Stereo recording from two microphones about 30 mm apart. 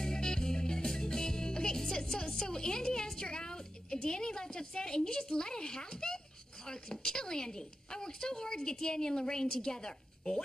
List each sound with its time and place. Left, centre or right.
0.0 s music: centre
1.8 s a woman's voice: centre